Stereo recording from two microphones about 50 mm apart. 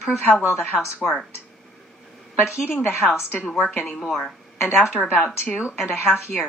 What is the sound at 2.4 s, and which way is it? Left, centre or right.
Speech, left.